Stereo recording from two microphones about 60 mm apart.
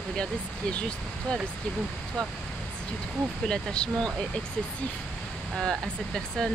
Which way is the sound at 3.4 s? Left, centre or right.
Centre.